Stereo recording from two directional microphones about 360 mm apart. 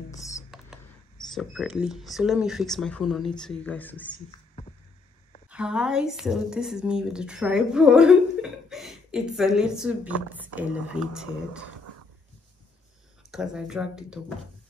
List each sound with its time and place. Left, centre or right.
0.1 s a sound: centre
1.3 s speech: centre
5.5 s speech: centre
13.3 s speech: centre